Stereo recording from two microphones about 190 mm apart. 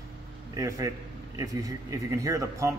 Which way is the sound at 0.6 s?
15° right (ahead or behind).